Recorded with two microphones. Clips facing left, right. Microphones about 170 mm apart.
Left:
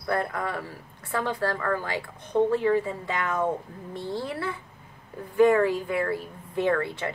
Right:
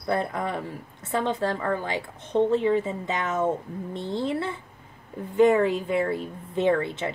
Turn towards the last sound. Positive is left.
turn(degrees=-20)  # may be behind; listen again after turning